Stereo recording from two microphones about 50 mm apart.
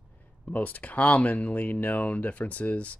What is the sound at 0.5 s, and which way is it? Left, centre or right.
Speech, left.